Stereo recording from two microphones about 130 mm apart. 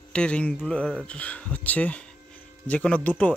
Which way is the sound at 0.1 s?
10° left (ahead or behind).